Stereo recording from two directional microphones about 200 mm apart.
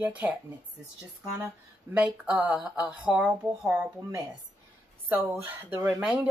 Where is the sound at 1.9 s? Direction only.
5° right (ahead or behind).